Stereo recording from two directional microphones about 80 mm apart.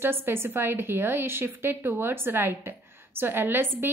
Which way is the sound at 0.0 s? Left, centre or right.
Right.